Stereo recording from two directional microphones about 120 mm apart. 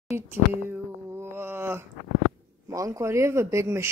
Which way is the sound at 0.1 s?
20° right (ahead or behind).